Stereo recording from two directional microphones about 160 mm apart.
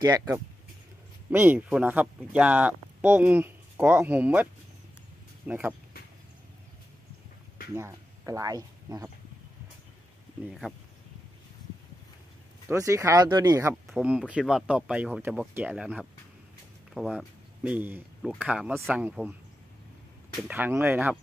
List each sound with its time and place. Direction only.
0.0 s speech: 20° right (ahead or behind)
1.3 s speech: 10° right (ahead or behind)
5.5 s speech: 10° right (ahead or behind)
7.7 s speech: 15° right (ahead or behind)
12.6 s speech: 20° right (ahead or behind)
13.8 s speech: 5° right (ahead or behind)
20.4 s speech: 10° right (ahead or behind)